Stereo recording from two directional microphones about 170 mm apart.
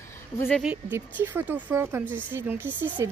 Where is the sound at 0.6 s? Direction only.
10° right (ahead or behind).